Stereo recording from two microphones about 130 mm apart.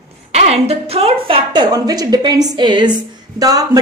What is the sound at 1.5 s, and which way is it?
A woman's voice, 30° right (ahead or behind).